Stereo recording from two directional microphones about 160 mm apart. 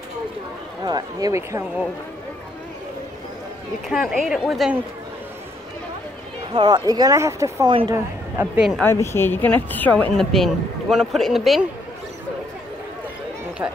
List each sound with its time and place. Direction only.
0.8 s speech: 25° right (ahead or behind)
3.9 s a woman's voice: 5° right (ahead or behind)
6.5 s speech: 30° right (ahead or behind); by 8.6 s 15° right (ahead or behind)
8.8 s speech: 15° left (ahead or behind); by 11.6 s centre (ahead or behind)